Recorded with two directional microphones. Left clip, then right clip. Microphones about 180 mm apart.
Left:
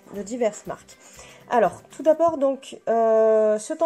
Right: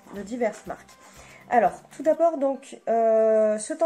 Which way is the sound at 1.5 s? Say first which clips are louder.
Left 1 dB; 45° left (ahead or behind).